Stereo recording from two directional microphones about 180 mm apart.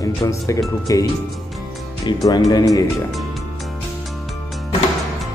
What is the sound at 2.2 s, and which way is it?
Speech, 20° left (ahead or behind).